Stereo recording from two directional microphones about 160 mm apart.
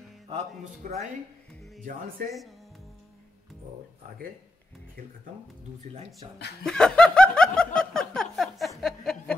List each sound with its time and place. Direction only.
0.8 s speech: 60° right (ahead or behind)
6.3 s speech: 90° left
6.6 s snicker: 5° left (ahead or behind)